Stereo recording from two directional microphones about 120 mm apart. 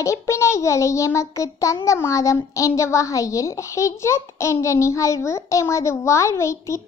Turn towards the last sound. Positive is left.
turn(degrees=25)  # may be behind; listen again after turning